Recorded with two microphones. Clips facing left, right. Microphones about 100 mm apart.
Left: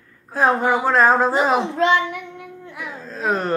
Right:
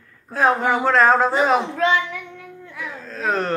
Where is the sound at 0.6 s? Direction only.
10° left (ahead or behind).